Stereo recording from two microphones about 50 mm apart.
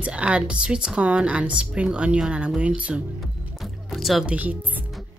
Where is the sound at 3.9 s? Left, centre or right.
Centre.